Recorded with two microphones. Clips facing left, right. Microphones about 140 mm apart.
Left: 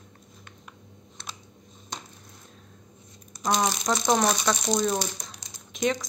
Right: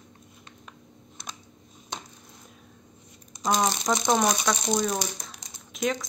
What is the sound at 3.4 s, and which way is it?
Speech, 5° right (ahead or behind).